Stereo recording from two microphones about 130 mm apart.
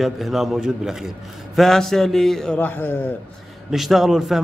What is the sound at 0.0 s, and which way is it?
Speech, centre (ahead or behind).